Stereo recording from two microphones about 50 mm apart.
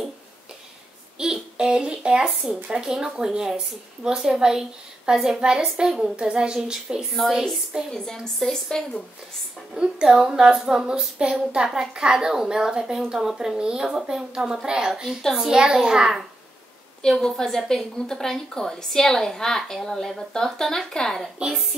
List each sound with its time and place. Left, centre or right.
1.1 s a child's voice: centre
5.9 s a woman's voice: centre
6.1 s a woman's voice: centre
7.9 s a woman's voice: centre
10.0 s a woman's voice: centre
17.0 s a woman's voice: centre